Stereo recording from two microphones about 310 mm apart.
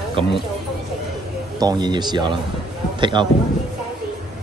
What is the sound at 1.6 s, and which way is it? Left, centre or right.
Speech, centre.